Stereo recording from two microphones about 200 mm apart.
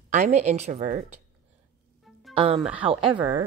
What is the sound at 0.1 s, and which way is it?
Speech, 35° right (ahead or behind).